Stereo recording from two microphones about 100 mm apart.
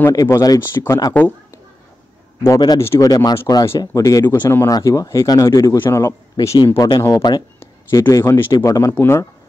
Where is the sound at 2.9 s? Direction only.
40° left (ahead or behind).